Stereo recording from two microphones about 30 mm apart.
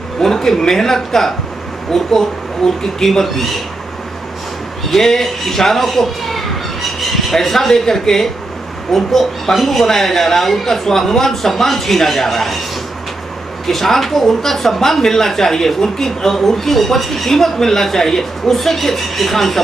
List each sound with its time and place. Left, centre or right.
0.2 s a woman's voice: centre
4.9 s a woman's voice: centre
13.7 s a woman's voice: centre